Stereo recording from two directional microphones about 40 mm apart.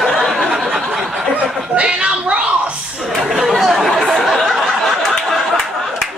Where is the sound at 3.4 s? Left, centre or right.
Centre.